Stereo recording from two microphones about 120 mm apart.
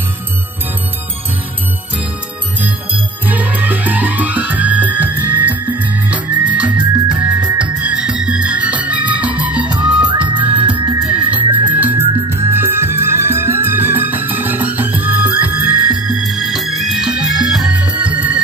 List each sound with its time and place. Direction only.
2.6 s music: 15° right (ahead or behind)
10.6 s music: 45° right (ahead or behind)
11.0 s music: 10° right (ahead or behind)
11.3 s music: 45° right (ahead or behind)
11.7 s music: 15° right (ahead or behind)